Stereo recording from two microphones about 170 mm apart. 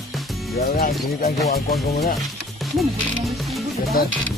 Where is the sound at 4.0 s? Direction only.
60° left (ahead or behind).